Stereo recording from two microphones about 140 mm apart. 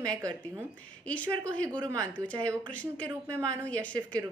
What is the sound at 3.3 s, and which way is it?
Speech, 20° right (ahead or behind).